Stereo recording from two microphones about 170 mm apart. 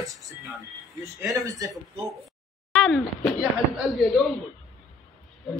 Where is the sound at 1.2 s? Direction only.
20° right (ahead or behind).